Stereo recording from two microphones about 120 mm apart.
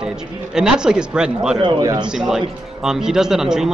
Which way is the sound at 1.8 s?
30° right (ahead or behind).